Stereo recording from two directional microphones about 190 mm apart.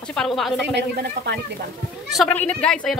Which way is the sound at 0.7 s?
60° right (ahead or behind).